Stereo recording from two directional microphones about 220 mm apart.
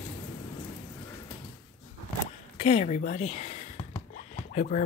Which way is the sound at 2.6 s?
30° left (ahead or behind).